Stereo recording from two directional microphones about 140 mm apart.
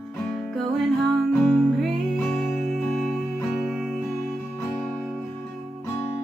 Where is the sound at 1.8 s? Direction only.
5° left (ahead or behind).